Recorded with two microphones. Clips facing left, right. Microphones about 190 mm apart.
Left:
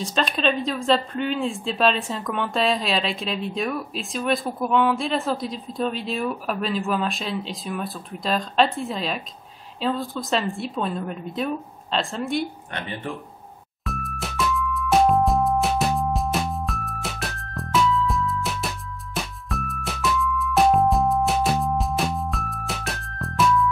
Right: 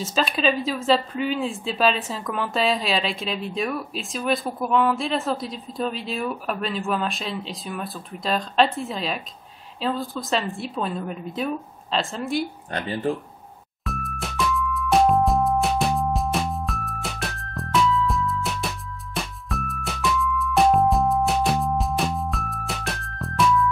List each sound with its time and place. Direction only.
0.0 s speech: 5° right (ahead or behind)
12.7 s speech: 35° right (ahead or behind)
13.8 s music: centre (ahead or behind)